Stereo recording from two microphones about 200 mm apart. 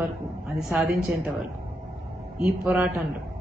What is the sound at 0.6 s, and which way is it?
A woman's voice, 5° right (ahead or behind).